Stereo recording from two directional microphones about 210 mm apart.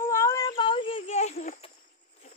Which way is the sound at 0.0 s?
10° left (ahead or behind).